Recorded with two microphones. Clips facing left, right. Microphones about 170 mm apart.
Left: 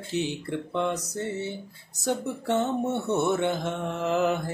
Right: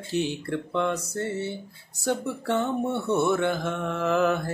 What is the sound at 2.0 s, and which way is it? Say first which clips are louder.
Mantra: right 1 dB; 20° left (ahead or behind).